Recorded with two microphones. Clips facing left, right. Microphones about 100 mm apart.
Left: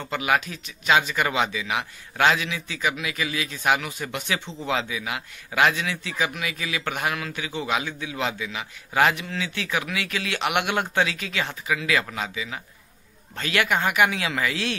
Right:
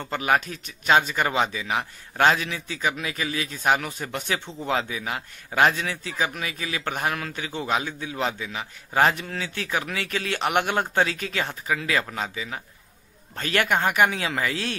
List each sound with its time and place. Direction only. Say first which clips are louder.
0.1 s a man's voice: right 1 dB; 40° right (ahead or behind)